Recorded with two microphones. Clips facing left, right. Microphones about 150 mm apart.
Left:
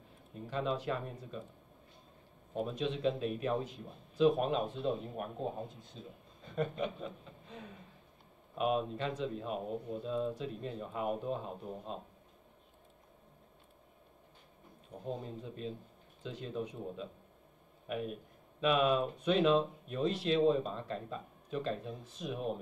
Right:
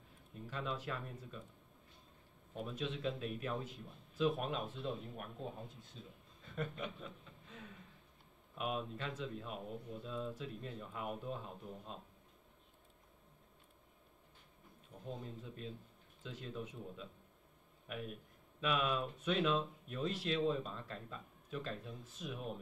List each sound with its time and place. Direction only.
0.5 s speech: 25° left (ahead or behind)
2.8 s speech: 25° left (ahead or behind)
6.4 s a sound: 20° left (ahead or behind)
8.5 s speech: 25° left (ahead or behind)
10.0 s speech: 25° left (ahead or behind)
15.0 s speech: 25° left (ahead or behind)